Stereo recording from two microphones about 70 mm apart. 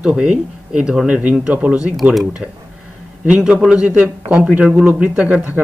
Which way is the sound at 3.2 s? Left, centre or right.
Centre.